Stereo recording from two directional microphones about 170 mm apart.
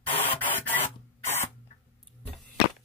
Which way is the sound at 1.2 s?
40° left (ahead or behind).